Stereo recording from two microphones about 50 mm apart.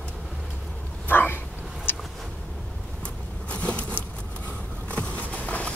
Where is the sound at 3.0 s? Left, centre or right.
Left.